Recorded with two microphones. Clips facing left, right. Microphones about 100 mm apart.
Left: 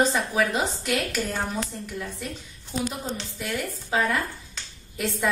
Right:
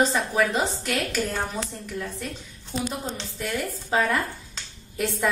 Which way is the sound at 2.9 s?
Centre (ahead or behind).